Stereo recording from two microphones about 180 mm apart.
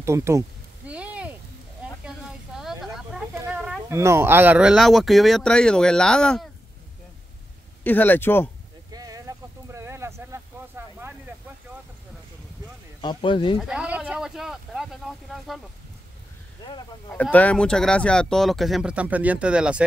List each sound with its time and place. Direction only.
0.0 s a sound: 15° right (ahead or behind)
4.0 s speech: 15° right (ahead or behind); by 6.4 s 5° left (ahead or behind)
7.8 s speech: 10° left (ahead or behind)
8.9 s a sound: 20° right (ahead or behind)
13.0 s speech: 25° left (ahead or behind)
13.6 s speech: 5° right (ahead or behind)
17.1 s speech: 10° left (ahead or behind)